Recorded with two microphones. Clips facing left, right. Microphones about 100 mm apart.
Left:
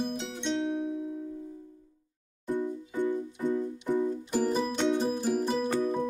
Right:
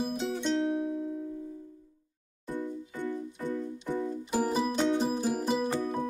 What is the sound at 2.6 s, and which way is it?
Music, 15° left (ahead or behind).